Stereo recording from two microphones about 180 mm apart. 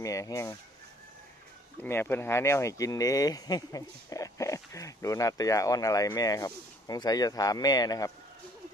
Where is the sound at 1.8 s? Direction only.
10° left (ahead or behind).